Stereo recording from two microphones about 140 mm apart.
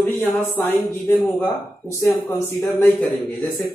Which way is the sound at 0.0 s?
15° left (ahead or behind).